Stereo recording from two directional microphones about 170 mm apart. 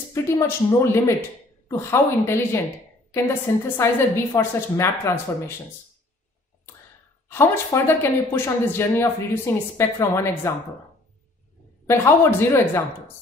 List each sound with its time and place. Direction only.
0.1 s speech: 15° left (ahead or behind)
3.6 s speech: 15° left (ahead or behind)
7.2 s speech: 15° left (ahead or behind)
11.8 s speech: 15° left (ahead or behind)